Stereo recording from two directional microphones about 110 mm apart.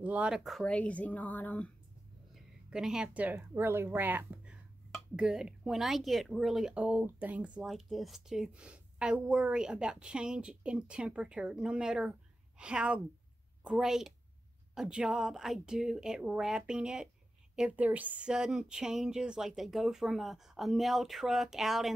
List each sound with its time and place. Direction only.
0.0 s a woman's voice: 10° right (ahead or behind)
0.7 s a woman's voice: 15° left (ahead or behind)
2.3 s a woman's voice: 5° right (ahead or behind)
4.9 s speech: 5° right (ahead or behind)
7.6 s a woman's voice: centre (ahead or behind)